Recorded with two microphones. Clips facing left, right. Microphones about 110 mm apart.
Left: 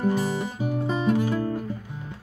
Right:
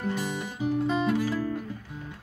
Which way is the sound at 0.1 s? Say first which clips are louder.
Left 6 dB; 40° left (ahead or behind).